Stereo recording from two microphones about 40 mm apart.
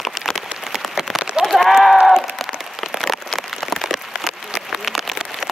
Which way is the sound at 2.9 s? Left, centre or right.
Centre.